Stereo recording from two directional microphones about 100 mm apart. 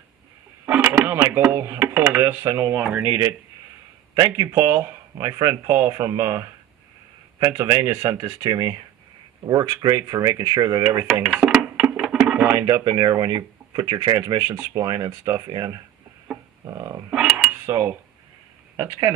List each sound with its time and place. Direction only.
0.7 s speech: 15° right (ahead or behind)
4.1 s speech: 40° right (ahead or behind)
4.5 s speech: 30° right (ahead or behind)
9.8 s speech: 35° right (ahead or behind)
11.4 s music: 5° right (ahead or behind)
12.4 s speech: 30° right (ahead or behind)
16.3 s a sound: 5° right (ahead or behind)
16.6 s dog: 30° right (ahead or behind)
17.1 s dishes: 5° right (ahead or behind)
17.6 s speech: 25° right (ahead or behind)